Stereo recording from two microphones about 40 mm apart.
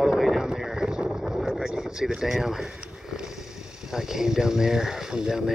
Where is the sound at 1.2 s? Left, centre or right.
Centre.